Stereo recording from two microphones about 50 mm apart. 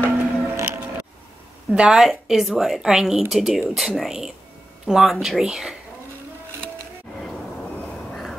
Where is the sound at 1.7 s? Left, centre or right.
Centre.